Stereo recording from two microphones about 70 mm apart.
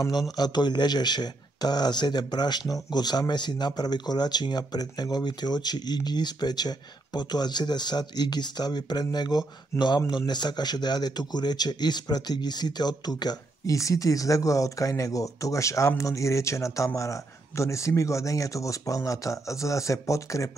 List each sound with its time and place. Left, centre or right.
0.0 s speech: left
13.7 s speech: left